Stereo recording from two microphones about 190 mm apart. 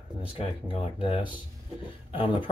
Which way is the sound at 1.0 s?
25° left (ahead or behind).